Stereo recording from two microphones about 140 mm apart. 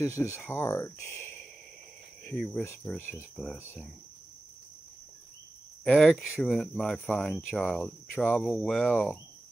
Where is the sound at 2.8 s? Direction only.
10° left (ahead or behind).